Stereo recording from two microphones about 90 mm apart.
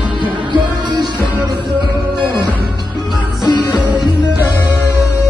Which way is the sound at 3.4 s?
55° left (ahead or behind).